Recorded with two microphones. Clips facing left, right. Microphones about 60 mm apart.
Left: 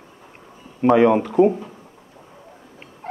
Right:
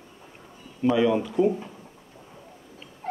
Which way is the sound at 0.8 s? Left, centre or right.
Left.